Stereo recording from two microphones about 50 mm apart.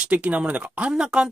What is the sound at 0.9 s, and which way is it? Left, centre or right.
Speech, centre.